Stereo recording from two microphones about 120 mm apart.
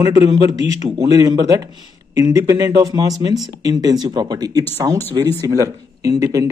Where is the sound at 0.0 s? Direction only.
35° right (ahead or behind).